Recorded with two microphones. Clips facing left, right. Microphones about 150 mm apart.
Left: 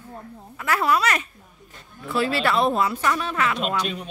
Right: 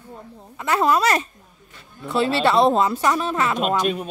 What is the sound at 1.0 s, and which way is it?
A woman's voice, 35° right (ahead or behind).